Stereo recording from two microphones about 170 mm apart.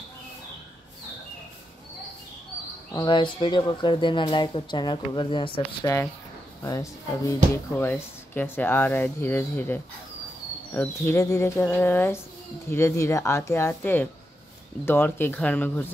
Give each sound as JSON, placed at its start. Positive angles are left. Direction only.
{"t": 2.9, "sound": "speech", "side_deg": 25}
{"t": 6.6, "sound": "speech", "side_deg": 20}